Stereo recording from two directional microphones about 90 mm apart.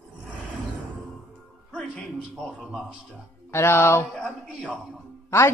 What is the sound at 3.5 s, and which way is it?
Speech, 25° left (ahead or behind).